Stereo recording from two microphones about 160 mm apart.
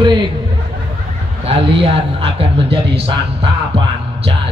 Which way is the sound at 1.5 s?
35° right (ahead or behind).